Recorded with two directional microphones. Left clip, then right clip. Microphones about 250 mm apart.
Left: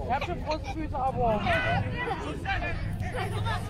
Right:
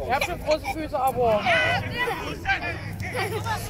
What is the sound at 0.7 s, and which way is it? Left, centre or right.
Speech, right.